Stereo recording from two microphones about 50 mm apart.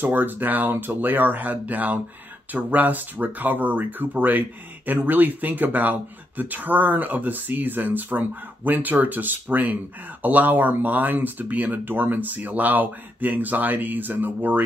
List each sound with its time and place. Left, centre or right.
0.0 s speech: right